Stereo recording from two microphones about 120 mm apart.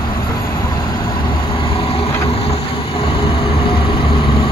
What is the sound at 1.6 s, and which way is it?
Vehicle, 50° left (ahead or behind).